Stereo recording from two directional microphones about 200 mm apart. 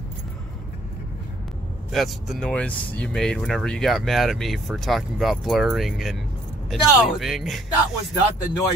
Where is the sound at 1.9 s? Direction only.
Centre (ahead or behind).